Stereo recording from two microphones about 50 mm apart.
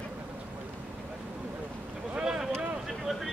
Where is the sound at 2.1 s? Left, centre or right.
Centre.